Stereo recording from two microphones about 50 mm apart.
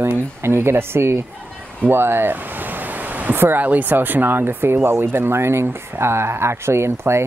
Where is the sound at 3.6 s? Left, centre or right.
Right.